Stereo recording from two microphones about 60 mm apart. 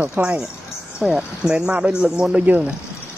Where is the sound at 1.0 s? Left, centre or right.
Centre.